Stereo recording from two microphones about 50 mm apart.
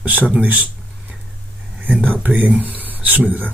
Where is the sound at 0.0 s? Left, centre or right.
Right.